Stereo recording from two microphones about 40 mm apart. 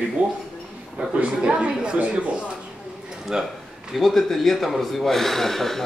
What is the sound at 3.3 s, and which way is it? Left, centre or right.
Speech, centre.